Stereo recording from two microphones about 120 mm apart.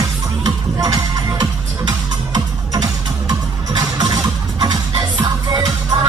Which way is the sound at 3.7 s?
35° right (ahead or behind).